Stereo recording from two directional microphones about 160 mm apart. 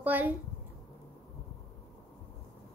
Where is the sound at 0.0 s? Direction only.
10° right (ahead or behind).